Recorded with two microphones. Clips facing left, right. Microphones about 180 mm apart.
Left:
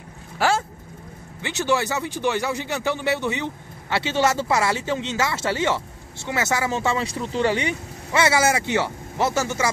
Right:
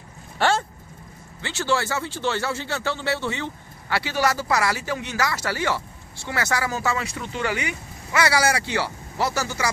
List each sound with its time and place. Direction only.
0.4 s speech: 5° left (ahead or behind)
1.4 s speech: 20° left (ahead or behind)